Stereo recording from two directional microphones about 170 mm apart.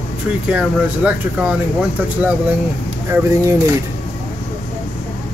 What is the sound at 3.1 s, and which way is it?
Speech, 20° right (ahead or behind).